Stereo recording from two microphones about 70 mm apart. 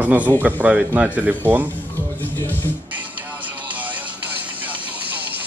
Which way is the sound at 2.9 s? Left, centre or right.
Right.